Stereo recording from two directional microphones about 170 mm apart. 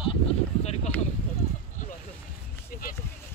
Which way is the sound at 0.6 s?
40° left (ahead or behind).